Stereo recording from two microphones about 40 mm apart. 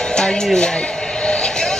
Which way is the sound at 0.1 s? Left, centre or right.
Centre.